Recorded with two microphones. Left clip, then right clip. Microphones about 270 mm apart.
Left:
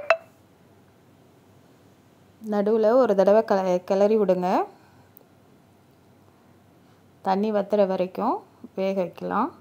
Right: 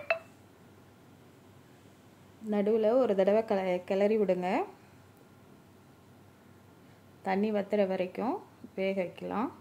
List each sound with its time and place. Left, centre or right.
2.5 s a woman's voice: left
7.2 s a woman's voice: left